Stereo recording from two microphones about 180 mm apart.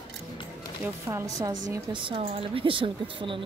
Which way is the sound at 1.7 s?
25° right (ahead or behind).